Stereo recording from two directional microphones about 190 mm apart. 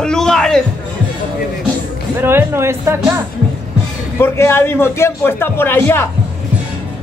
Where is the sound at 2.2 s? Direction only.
10° right (ahead or behind).